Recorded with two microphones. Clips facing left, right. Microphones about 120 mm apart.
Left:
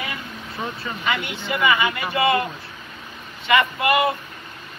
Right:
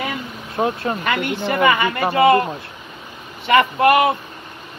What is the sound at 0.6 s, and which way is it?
Speech, 55° right (ahead or behind).